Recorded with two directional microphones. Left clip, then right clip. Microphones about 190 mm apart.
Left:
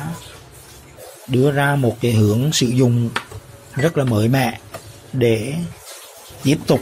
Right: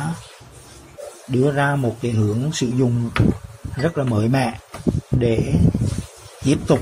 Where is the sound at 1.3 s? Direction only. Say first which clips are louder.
Left 2 dB; 10° left (ahead or behind).